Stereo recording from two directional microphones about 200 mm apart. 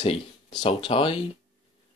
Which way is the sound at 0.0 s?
25° left (ahead or behind).